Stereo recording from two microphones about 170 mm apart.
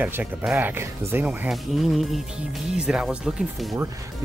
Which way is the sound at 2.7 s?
5° right (ahead or behind).